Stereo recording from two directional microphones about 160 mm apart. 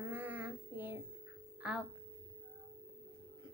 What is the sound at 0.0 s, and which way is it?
Child singing, 10° right (ahead or behind).